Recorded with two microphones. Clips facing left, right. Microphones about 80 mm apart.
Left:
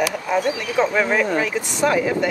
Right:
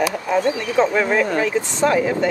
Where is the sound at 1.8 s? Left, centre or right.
Right.